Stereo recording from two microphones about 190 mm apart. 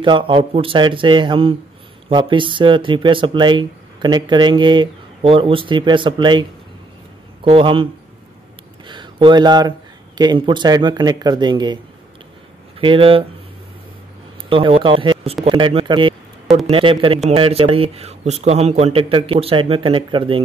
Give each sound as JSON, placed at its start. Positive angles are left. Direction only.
{"t": 0.0, "sound": "speech", "side_deg": -25}
{"t": 7.4, "sound": "speech", "side_deg": -30}
{"t": 12.8, "sound": "speech", "side_deg": -30}
{"t": 14.5, "sound": "a man's voice", "side_deg": -25}